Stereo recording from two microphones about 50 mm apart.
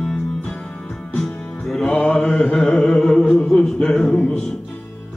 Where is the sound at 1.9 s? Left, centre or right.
Left.